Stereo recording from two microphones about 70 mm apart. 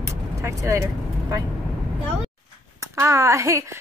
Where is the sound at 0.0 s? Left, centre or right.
Right.